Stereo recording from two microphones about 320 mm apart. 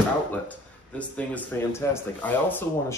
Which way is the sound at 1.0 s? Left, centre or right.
Centre.